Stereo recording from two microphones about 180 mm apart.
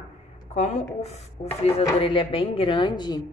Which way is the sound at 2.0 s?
30° left (ahead or behind).